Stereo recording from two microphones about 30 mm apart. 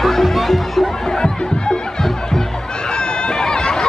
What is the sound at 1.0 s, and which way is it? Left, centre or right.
Music, left.